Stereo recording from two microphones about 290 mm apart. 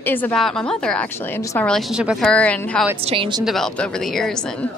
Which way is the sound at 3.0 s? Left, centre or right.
Centre.